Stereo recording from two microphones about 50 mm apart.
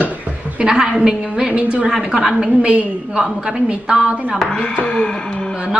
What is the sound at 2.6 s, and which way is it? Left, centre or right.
Speech, right.